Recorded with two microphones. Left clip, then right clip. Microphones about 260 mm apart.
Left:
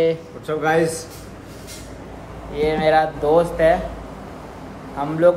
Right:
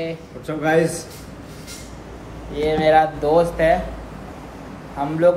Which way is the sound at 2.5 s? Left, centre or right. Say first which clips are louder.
Right 1 dB; centre.